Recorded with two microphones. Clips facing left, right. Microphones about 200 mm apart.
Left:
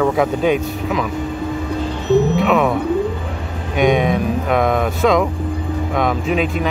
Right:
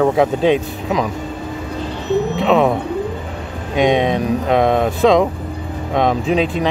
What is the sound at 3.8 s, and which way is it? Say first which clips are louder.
Speech: right 1 dB; 25° right (ahead or behind).